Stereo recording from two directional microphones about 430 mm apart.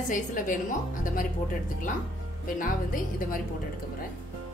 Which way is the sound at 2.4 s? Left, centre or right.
Centre.